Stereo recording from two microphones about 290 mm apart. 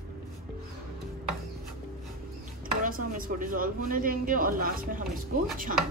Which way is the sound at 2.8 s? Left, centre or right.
Right.